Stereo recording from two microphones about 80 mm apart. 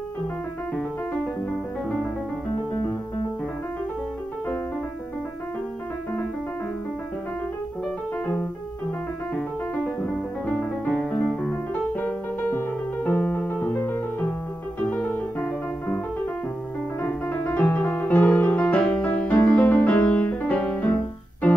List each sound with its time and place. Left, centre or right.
10.4 s music: centre
17.0 s music: left